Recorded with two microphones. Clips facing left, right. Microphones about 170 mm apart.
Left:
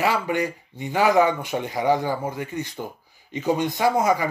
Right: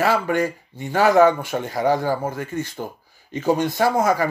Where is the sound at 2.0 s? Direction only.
45° right (ahead or behind).